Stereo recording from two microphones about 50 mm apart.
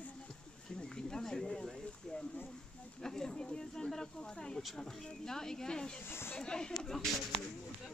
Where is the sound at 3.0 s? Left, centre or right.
Centre.